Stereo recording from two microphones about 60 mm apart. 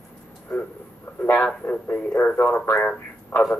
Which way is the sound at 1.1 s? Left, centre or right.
Left.